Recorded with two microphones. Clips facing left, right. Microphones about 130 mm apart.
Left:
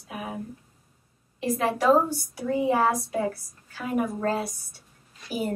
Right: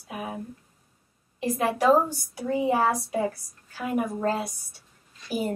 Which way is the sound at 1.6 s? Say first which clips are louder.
Even; 15° right (ahead or behind).